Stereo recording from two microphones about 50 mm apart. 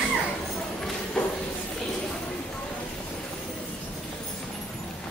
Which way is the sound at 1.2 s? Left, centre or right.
Centre.